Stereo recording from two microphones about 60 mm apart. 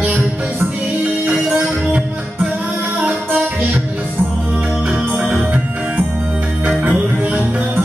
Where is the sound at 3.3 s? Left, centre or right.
Right.